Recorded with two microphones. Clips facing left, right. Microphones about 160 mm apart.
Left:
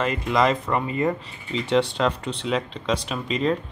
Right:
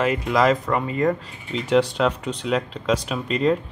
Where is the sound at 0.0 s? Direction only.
5° right (ahead or behind).